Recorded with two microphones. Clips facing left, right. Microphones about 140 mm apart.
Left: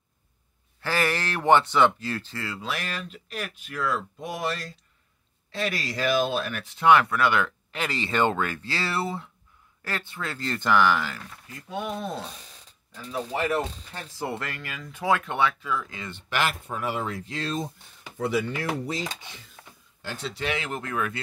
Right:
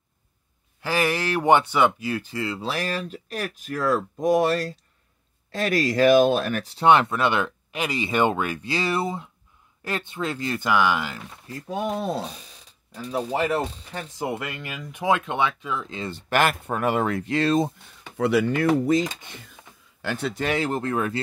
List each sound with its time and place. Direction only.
0.7 s speech: 15° right (ahead or behind)
2.6 s speech: 35° right (ahead or behind); by 11.3 s 15° right (ahead or behind)
11.6 s speech: 40° right (ahead or behind); by 20.4 s 55° right (ahead or behind)
20.4 s speech: 35° right (ahead or behind)